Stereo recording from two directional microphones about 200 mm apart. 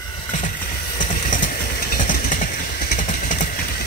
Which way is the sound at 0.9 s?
40° left (ahead or behind).